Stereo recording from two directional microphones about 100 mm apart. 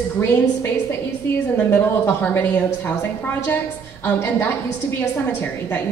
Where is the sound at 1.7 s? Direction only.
20° left (ahead or behind).